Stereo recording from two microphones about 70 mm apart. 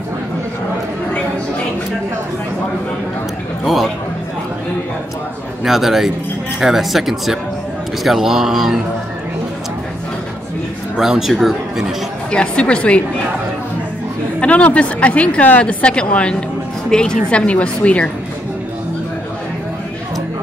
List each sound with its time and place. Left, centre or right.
3.6 s speech: centre
5.6 s speech: centre
11.0 s speech: centre
12.3 s a woman's voice: centre
14.4 s a woman's voice: centre